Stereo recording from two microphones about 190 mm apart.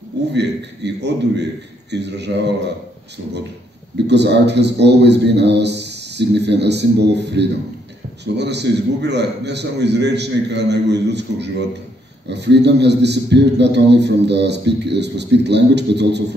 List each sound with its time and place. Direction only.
0.3 s a man's voice: 65° right (ahead or behind)
4.1 s a man's voice: 65° right (ahead or behind)